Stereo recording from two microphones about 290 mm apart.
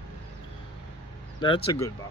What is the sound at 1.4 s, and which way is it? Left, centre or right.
Speech, centre.